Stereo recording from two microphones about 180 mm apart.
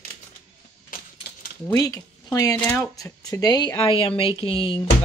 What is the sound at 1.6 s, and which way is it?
Speech, 20° left (ahead or behind).